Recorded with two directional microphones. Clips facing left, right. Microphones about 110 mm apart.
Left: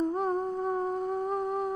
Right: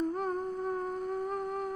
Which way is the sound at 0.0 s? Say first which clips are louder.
Left 4 dB; 30° left (ahead or behind).